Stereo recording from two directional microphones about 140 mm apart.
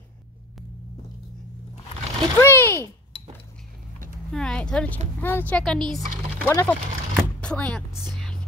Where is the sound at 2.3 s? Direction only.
15° left (ahead or behind).